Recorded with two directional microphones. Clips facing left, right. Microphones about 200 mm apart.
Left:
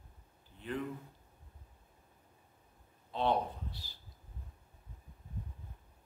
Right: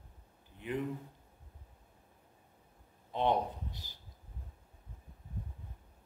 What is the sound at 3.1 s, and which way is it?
Speech, 15° right (ahead or behind).